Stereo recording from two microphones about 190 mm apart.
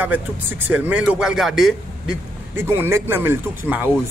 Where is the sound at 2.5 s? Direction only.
15° right (ahead or behind).